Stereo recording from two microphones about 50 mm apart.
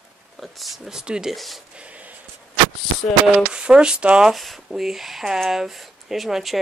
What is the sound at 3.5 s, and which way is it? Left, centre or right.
Speech, centre.